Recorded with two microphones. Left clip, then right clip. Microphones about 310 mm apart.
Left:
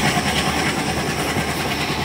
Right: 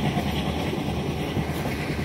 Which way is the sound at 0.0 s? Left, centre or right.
Left.